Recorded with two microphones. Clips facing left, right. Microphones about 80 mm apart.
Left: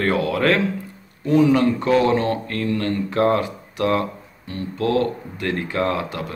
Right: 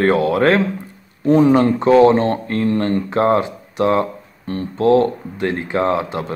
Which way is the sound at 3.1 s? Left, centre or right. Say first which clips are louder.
Right 2 dB; right.